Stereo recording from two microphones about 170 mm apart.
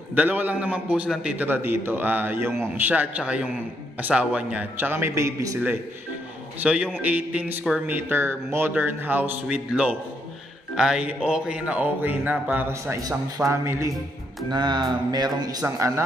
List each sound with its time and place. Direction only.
0.1 s speech: 10° right (ahead or behind)
6.6 s a man's voice: 10° right (ahead or behind)